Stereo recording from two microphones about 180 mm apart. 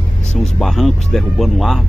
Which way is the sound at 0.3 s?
Centre (ahead or behind).